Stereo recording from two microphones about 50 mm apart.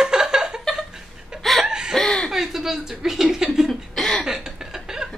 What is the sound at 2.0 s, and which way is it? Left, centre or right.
Chuckle, centre.